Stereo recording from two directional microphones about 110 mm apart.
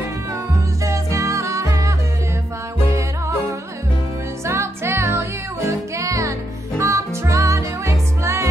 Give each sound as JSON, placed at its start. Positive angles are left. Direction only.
{"t": 0.8, "sound": "music", "side_deg": -25}
{"t": 4.5, "sound": "music", "side_deg": -25}